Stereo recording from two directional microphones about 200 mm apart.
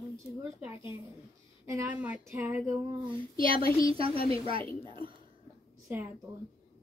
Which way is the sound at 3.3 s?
45° left (ahead or behind).